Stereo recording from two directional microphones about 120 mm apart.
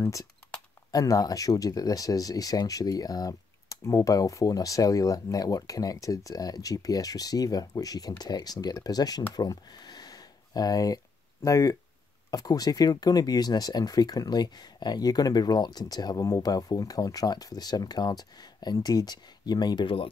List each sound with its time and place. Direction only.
0.0 s speech: 25° left (ahead or behind)
9.3 s a sound: 35° left (ahead or behind)
11.4 s speech: 30° left (ahead or behind); by 20.1 s 45° left (ahead or behind)